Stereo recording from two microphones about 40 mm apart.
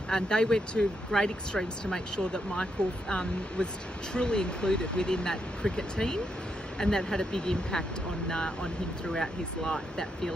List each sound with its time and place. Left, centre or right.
0.1 s speech: centre